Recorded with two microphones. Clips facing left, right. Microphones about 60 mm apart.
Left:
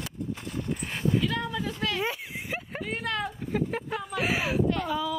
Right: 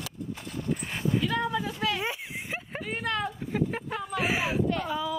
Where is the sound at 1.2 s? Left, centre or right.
Centre.